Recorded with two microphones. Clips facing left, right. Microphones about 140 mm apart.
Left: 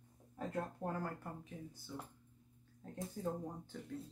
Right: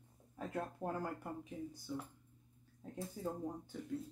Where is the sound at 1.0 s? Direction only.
15° right (ahead or behind).